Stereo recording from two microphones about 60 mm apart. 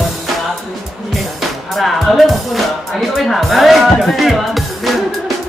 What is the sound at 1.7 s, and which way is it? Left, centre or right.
Speech, centre.